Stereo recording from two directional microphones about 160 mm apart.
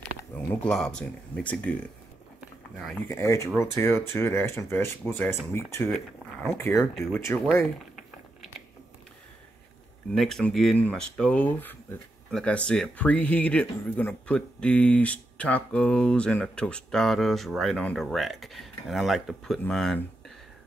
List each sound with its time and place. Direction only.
0.3 s speech: 10° left (ahead or behind)
3.1 s speech: 20° left (ahead or behind)
6.8 s speech: centre (ahead or behind)
10.1 s speech: centre (ahead or behind)